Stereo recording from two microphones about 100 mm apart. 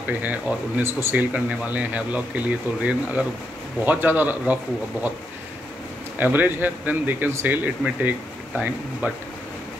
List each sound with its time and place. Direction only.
0.1 s speech: 15° right (ahead or behind)
6.1 s speech: 15° right (ahead or behind)